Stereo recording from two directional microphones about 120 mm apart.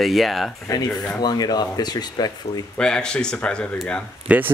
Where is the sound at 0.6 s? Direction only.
30° left (ahead or behind).